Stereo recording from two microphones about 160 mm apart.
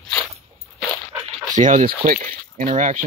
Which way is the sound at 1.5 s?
55° right (ahead or behind).